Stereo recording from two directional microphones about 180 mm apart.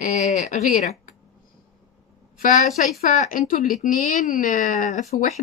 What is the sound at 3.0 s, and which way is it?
Speech, 50° left (ahead or behind).